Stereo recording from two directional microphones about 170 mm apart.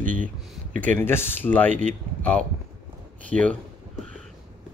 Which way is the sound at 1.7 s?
45° right (ahead or behind).